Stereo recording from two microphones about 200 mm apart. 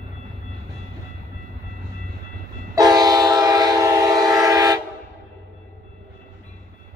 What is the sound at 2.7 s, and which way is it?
Train, 20° right (ahead or behind).